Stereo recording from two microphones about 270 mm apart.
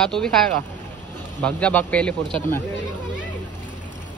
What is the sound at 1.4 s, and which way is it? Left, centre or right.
Speech, centre.